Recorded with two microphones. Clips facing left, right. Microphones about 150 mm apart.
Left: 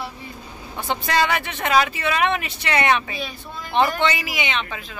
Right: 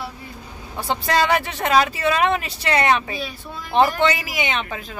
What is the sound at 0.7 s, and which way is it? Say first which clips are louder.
Speech: right 1 dB; 35° right (ahead or behind).